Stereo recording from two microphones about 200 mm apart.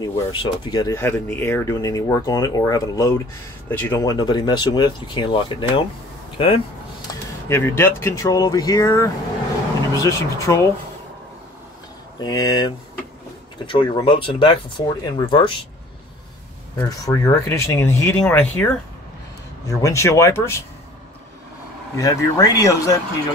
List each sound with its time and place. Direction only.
0.0 s speech: 25° left (ahead or behind)
7.1 s speech: 15° left (ahead or behind)
12.2 s speech: 20° left (ahead or behind)
16.7 s speech: 15° left (ahead or behind)
21.9 s speech: 15° left (ahead or behind)